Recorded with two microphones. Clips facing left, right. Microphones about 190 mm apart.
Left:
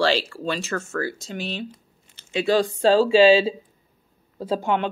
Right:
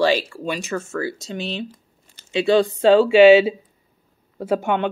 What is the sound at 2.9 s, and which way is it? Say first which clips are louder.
Speech: right 4 dB; 30° left (ahead or behind).